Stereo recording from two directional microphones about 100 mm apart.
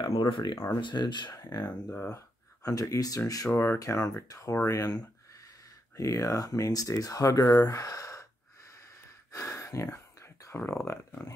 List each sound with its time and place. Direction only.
0.3 s speech: 50° left (ahead or behind)
1.7 s speech: 15° left (ahead or behind)
2.0 s speech: 35° left (ahead or behind)
5.9 s speech: 35° left (ahead or behind)
9.3 s a sound: 30° left (ahead or behind)